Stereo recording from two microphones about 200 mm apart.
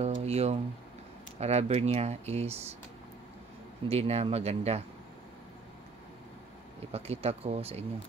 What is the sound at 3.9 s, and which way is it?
Speech, 30° right (ahead or behind).